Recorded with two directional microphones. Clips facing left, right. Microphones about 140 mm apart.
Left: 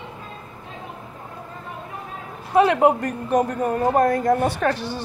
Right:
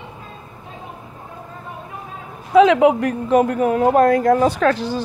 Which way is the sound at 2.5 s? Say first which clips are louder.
Right 4 dB; 90° right.